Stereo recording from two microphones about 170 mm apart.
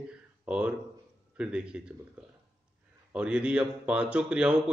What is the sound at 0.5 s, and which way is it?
Speech, 5° right (ahead or behind).